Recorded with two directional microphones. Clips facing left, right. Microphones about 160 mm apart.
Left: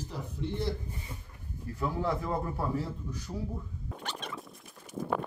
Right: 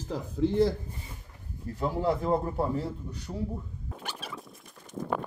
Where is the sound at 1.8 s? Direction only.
30° right (ahead or behind).